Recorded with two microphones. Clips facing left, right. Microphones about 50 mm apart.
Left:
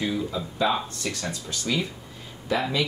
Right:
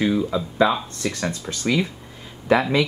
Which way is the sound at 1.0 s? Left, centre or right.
Right.